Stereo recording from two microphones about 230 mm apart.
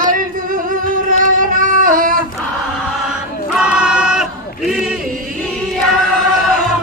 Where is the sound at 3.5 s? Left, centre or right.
Centre.